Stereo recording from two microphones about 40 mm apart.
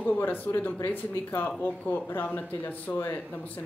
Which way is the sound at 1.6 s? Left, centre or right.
Left.